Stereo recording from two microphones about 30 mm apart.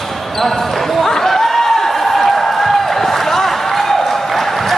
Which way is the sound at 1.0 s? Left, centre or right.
Centre.